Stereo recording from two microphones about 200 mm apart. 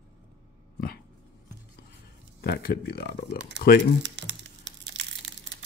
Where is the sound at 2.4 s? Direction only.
50° left (ahead or behind).